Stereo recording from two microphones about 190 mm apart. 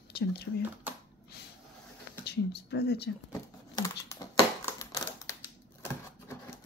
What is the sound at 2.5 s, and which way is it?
Speech, 60° left (ahead or behind).